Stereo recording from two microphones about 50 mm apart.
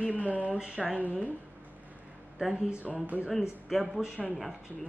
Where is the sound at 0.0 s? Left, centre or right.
Left.